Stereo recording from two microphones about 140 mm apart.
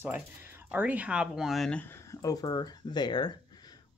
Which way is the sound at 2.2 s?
30° left (ahead or behind).